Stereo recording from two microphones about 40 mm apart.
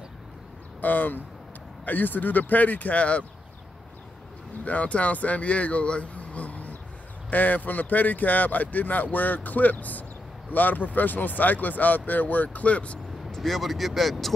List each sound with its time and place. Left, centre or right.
0.7 s speech: left
4.6 s speech: left
13.3 s speech: centre